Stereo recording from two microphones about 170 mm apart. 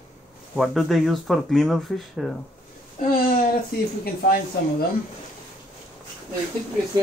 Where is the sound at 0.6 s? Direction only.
Centre (ahead or behind).